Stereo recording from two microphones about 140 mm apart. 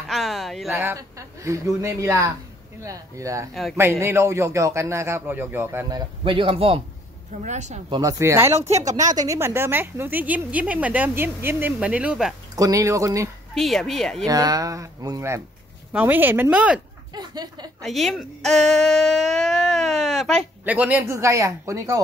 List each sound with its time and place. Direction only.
0.1 s speech: centre (ahead or behind)
0.7 s a man's voice: 20° right (ahead or behind)
5.9 s speech: 35° right (ahead or behind)
7.4 s speech: 55° right (ahead or behind)
7.9 s a man's voice: 25° right (ahead or behind)
8.5 s speech: 50° right (ahead or behind)
9.1 s a woman's voice: 25° right (ahead or behind); by 12.4 s 5° right (ahead or behind)
12.5 s a man's voice: 25° right (ahead or behind)
13.6 s speech: centre (ahead or behind)
14.2 s a man's voice: 25° right (ahead or behind)
15.9 s a woman's voice: 10° right (ahead or behind)
17.1 s speech: 30° right (ahead or behind)
17.8 s speech: centre (ahead or behind)
20.6 s a woman's voice: 10° right (ahead or behind)